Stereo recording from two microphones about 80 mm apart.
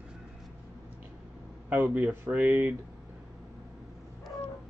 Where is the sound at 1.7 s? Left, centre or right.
Right.